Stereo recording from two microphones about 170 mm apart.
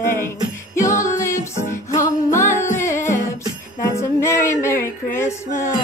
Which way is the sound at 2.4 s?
50° left (ahead or behind).